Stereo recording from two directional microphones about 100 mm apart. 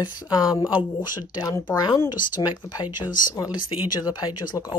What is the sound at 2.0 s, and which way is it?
Speech, 45° left (ahead or behind).